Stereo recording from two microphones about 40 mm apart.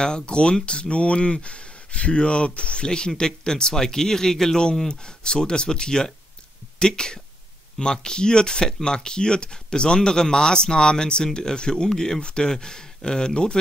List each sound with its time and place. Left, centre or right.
0.0 s speech: left
12.2 s speech: left